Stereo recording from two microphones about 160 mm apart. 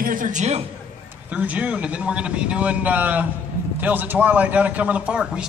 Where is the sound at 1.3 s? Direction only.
10° right (ahead or behind).